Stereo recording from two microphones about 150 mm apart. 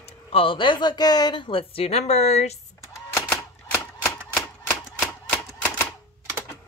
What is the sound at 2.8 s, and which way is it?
Typewriter, 20° left (ahead or behind).